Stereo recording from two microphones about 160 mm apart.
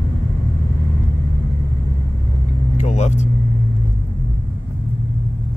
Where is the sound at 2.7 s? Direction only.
45° left (ahead or behind).